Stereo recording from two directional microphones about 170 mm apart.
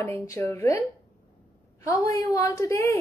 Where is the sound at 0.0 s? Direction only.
15° left (ahead or behind).